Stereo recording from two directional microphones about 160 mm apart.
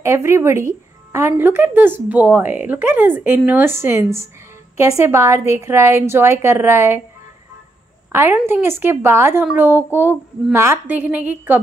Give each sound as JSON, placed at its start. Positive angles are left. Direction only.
{"t": 0.0, "sound": "speech", "side_deg": -15}
{"t": 8.1, "sound": "speech", "side_deg": -15}